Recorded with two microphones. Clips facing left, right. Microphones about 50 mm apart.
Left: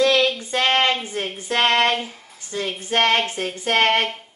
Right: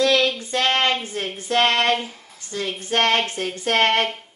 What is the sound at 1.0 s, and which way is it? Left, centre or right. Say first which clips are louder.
A woman's voice: even; centre.